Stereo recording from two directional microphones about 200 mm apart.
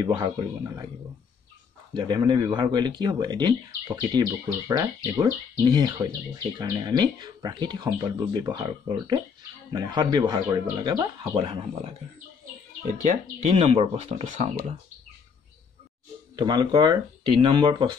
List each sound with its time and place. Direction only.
0.0 s speech: 20° right (ahead or behind)
2.0 s speech: 20° right (ahead or behind)
13.0 s speech: 35° right (ahead or behind)
16.3 s speech: 20° right (ahead or behind)